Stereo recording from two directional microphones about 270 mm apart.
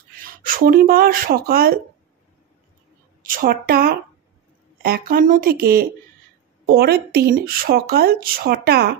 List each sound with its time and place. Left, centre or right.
0.2 s speech: right
3.2 s speech: right